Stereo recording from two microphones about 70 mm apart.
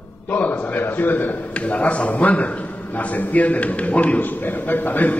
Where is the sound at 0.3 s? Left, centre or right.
Left.